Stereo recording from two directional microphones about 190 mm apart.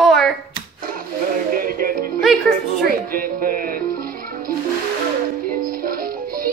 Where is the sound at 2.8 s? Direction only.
50° right (ahead or behind).